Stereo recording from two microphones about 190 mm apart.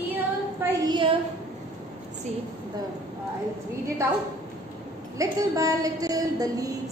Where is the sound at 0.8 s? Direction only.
25° right (ahead or behind).